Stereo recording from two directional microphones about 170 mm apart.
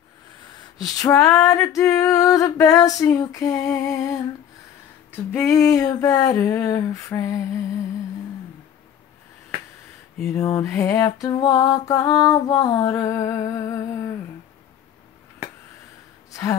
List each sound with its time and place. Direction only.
0.7 s music: 20° left (ahead or behind)
10.2 s music: 20° left (ahead or behind)
16.3 s a sound: 20° left (ahead or behind)